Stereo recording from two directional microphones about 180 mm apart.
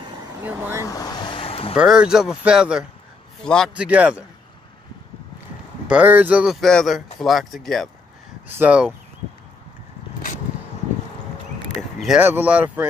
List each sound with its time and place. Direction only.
0.4 s speech: 10° right (ahead or behind)
0.8 s vehicle: 20° left (ahead or behind)
1.8 s speech: 5° right (ahead or behind)
3.7 s speech: 5° right (ahead or behind)
5.9 s speech: 10° right (ahead or behind)
8.5 s speech: 10° right (ahead or behind)
12.0 s speech: 5° right (ahead or behind)